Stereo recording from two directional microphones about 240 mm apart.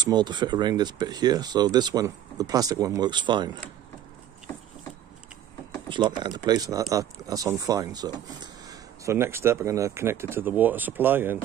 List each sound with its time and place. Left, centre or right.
0.0 s speech: centre
5.9 s speech: centre